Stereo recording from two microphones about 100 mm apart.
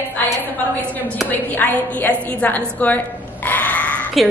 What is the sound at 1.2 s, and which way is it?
A woman's voice, 15° left (ahead or behind).